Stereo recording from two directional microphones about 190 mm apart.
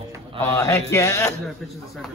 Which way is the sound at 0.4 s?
15° left (ahead or behind).